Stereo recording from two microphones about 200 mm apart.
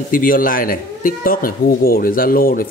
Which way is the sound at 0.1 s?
45° left (ahead or behind).